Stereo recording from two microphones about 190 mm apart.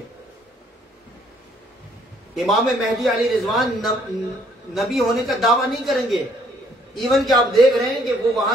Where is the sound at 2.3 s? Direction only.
Centre (ahead or behind).